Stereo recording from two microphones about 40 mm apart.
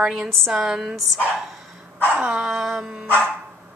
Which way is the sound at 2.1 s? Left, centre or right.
Right.